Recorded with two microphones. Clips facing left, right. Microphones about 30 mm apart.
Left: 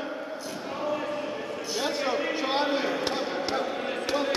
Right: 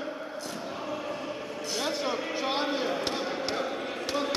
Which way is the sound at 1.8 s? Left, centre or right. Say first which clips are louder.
Left 2 dB; centre.